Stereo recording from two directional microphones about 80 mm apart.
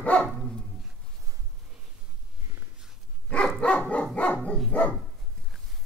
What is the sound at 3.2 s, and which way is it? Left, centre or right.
Dog, centre.